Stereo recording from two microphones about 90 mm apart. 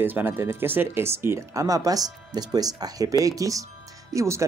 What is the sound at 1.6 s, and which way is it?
Speech, 40° right (ahead or behind).